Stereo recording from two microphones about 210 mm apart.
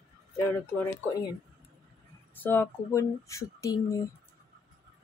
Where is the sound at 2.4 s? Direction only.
10° left (ahead or behind).